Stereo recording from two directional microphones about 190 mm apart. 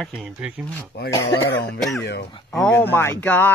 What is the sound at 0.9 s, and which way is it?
Speech, 60° left (ahead or behind).